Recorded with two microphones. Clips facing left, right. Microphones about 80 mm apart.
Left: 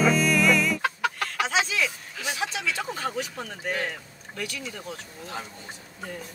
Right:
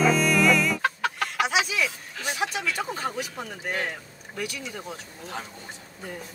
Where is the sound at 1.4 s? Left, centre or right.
Centre.